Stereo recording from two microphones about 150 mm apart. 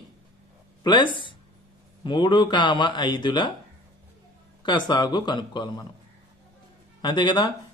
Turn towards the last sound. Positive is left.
turn(degrees=30)  # may be behind; listen again after turning